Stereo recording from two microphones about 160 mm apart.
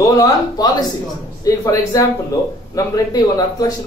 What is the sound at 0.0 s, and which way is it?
A man's voice, 20° left (ahead or behind).